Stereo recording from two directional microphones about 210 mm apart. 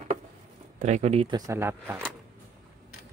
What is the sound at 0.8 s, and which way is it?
Speech, 35° right (ahead or behind).